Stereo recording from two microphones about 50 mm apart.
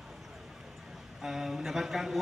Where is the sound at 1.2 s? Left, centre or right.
Centre.